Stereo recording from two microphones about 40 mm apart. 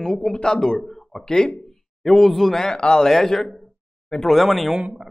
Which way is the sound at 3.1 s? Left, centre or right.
Centre.